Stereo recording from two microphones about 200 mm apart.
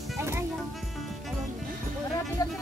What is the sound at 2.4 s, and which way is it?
Speech, 15° left (ahead or behind).